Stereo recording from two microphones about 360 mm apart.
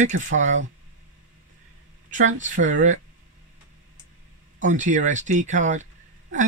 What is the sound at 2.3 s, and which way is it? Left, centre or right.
Speech, right.